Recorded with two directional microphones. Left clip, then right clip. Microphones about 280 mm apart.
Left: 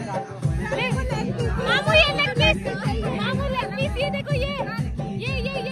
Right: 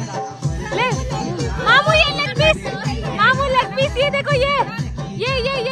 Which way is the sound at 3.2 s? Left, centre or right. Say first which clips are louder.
Right 15 dB; right.